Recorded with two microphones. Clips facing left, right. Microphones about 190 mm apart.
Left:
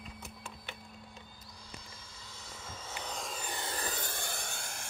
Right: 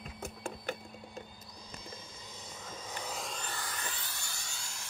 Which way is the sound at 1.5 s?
20° right (ahead or behind).